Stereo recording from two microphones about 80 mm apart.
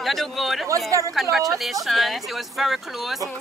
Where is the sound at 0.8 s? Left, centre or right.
Right.